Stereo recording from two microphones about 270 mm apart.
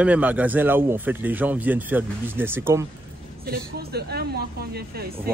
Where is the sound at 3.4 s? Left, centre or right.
Right.